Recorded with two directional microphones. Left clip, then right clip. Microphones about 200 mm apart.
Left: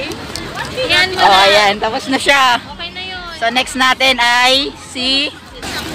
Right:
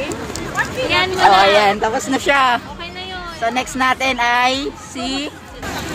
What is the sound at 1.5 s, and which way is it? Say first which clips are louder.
Speech: left 2 dB; 10° left (ahead or behind).